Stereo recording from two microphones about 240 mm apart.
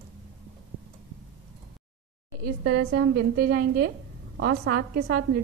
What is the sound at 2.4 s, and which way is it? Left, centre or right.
Speech, right.